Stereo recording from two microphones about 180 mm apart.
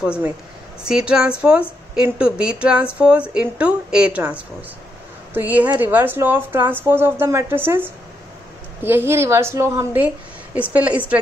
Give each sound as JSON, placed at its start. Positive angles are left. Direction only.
{"t": 0.8, "sound": "a woman's voice", "side_deg": -5}